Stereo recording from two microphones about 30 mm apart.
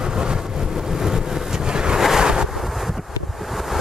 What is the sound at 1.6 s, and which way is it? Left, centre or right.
Wind noise, right.